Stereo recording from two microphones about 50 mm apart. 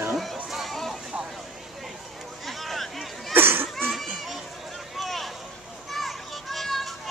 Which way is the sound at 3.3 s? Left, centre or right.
Right.